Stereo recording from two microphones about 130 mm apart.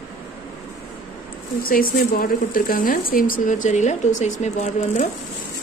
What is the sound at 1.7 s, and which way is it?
Speech, 90° left.